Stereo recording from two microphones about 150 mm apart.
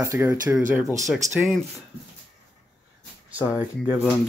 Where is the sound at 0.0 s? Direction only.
20° right (ahead or behind).